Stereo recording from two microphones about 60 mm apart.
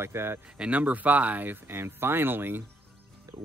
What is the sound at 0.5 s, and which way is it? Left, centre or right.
Speech, right.